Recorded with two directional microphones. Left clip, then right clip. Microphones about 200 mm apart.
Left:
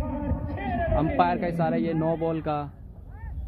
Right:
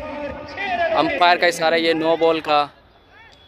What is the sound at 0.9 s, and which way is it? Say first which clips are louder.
Speech: right 8 dB; 35° right (ahead or behind).